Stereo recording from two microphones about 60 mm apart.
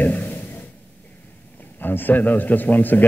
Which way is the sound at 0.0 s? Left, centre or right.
Left.